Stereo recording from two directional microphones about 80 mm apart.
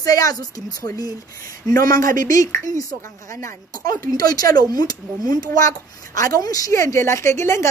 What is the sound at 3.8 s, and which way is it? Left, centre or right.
A woman's voice, left.